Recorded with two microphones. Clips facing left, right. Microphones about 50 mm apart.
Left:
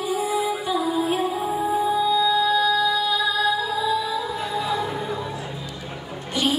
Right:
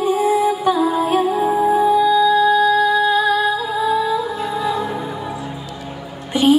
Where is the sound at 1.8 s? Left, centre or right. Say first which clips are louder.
Right 5 dB; right.